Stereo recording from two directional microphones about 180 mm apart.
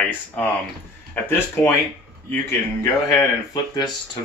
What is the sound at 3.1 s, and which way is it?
Speech, 20° left (ahead or behind).